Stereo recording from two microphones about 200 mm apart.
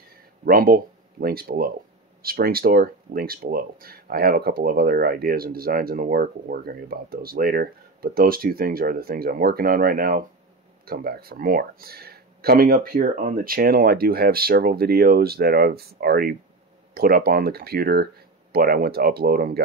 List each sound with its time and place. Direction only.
0.5 s speech: 50° right (ahead or behind)